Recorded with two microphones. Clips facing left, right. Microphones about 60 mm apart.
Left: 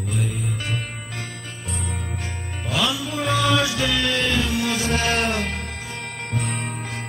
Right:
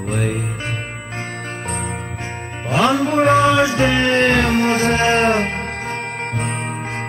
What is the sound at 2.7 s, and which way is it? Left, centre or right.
Music, right.